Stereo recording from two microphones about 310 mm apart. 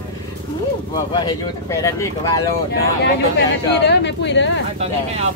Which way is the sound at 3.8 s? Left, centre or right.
Left.